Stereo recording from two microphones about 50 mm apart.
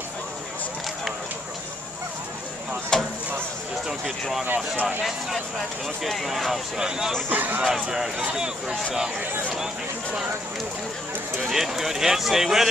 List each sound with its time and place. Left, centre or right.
2.9 s a sound: centre
4.0 s speech: centre
7.2 s speech: right
7.7 s speech: centre
11.4 s speech: centre